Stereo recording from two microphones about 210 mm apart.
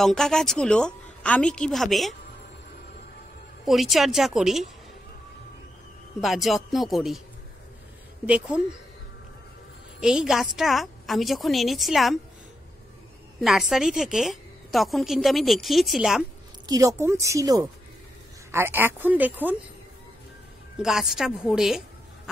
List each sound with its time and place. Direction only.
0.0 s a woman's voice: 5° left (ahead or behind)
3.6 s a woman's voice: centre (ahead or behind)
6.2 s a woman's voice: centre (ahead or behind)
8.3 s a woman's voice: 5° right (ahead or behind)
9.9 s a woman's voice: 5° right (ahead or behind)
13.4 s a woman's voice: centre (ahead or behind)
16.6 s speech: 15° right (ahead or behind)
20.7 s a woman's voice: 5° right (ahead or behind)